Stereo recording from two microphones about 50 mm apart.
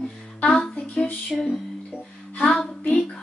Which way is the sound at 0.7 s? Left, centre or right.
Left.